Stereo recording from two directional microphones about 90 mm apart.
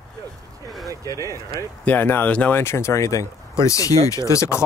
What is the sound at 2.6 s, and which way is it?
Speech, 30° left (ahead or behind).